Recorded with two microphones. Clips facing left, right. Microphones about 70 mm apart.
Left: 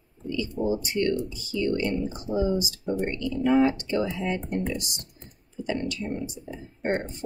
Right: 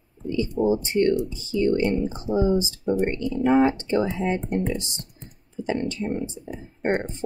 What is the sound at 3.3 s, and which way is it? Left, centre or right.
Speech, right.